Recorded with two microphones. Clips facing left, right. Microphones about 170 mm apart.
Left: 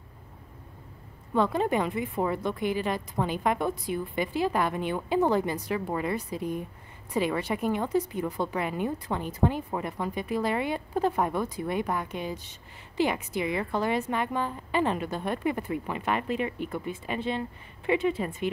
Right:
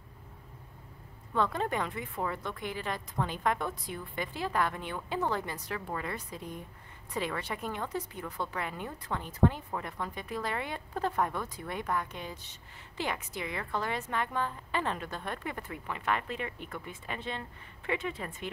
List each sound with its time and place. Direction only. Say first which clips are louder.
1.3 s speech: left 6 dB; 15° left (ahead or behind)